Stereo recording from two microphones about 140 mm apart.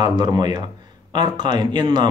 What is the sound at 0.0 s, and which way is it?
Speech, 30° right (ahead or behind).